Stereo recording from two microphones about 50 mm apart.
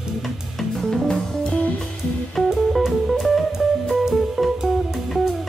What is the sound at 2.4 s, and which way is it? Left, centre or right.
Music, centre.